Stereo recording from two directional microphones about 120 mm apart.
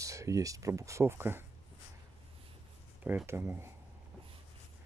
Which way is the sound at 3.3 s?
20° right (ahead or behind).